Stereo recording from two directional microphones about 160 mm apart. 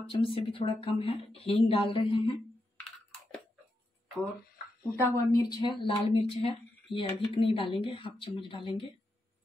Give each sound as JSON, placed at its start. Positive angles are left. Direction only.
{"t": 0.1, "sound": "speech", "side_deg": 35}
{"t": 5.0, "sound": "speech", "side_deg": 25}